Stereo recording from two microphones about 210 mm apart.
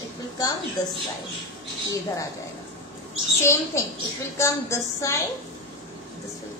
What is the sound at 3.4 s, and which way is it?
A woman's voice, 15° left (ahead or behind).